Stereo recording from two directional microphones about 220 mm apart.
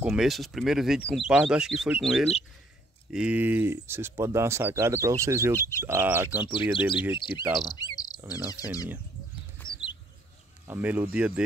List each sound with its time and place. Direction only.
0.0 s speech: 5° right (ahead or behind)
5.6 s speech: 10° left (ahead or behind)
5.9 s speech: 10° right (ahead or behind)
7.7 s cricket: 15° left (ahead or behind)
8.5 s speech: 15° left (ahead or behind)
9.6 s a sound: 20° left (ahead or behind)
10.7 s speech: 10° right (ahead or behind)